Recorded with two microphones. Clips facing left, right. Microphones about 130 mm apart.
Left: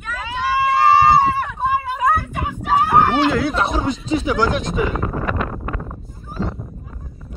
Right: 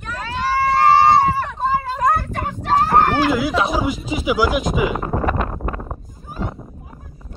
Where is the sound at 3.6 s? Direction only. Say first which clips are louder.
Right 1 dB; 5° right (ahead or behind).